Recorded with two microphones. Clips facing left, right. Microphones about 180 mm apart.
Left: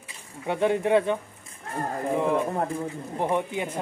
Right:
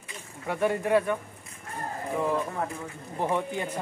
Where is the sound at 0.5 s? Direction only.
20° left (ahead or behind).